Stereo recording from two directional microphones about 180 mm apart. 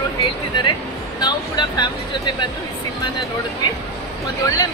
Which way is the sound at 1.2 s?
25° left (ahead or behind).